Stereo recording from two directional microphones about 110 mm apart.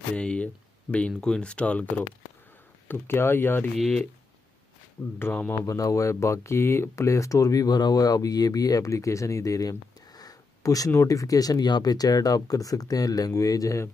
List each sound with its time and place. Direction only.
0.1 s speech: 10° left (ahead or behind)
3.7 s speech: centre (ahead or behind)
5.2 s speech: 20° left (ahead or behind)